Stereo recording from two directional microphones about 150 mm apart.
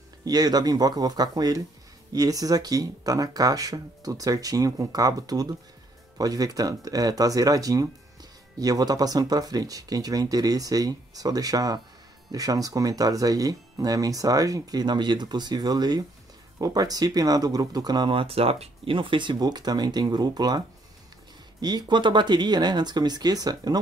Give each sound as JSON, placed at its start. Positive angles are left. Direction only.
{"t": 0.2, "sound": "speech", "side_deg": -25}